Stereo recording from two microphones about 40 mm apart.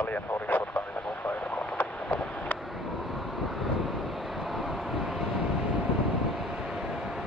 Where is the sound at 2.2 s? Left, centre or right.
Left.